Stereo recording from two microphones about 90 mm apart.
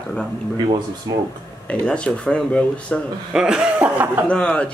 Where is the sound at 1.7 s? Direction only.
10° left (ahead or behind).